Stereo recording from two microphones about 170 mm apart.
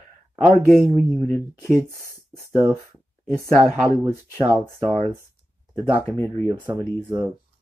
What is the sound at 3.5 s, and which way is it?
Speech, 20° right (ahead or behind).